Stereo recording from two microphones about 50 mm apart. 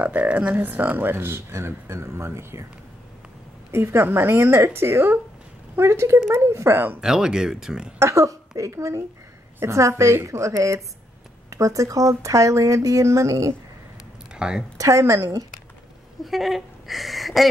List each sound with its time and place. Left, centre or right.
0.0 s speech: right
1.0 s speech: right
3.7 s speech: right
5.8 s a woman's voice: right
6.7 s speech: right
7.0 s speech: centre
8.0 s a woman's voice: right
14.3 s a sound: centre
14.8 s speech: right
16.3 s speech: centre